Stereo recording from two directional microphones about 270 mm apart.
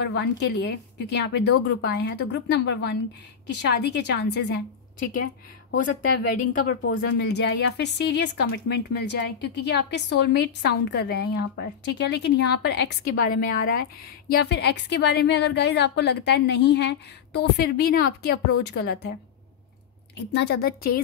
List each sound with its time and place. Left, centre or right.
0.0 s a woman's voice: left
6.3 s a woman's voice: left
7.1 s a woman's voice: left
20.3 s a woman's voice: left